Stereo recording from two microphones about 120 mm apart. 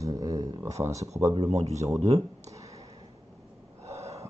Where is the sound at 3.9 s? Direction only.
65° right (ahead or behind).